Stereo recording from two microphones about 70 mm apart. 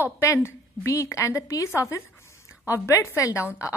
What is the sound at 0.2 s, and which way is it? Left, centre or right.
A woman's voice, left.